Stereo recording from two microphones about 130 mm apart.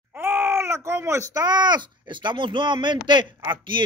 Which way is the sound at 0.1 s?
15° right (ahead or behind).